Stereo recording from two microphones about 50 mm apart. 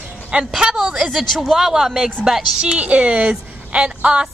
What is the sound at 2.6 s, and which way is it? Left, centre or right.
A woman's voice, right.